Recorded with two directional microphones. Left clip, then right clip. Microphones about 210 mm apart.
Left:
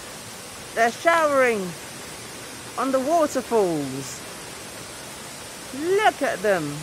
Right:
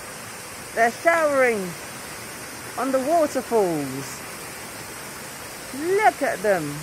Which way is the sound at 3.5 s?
15° left (ahead or behind).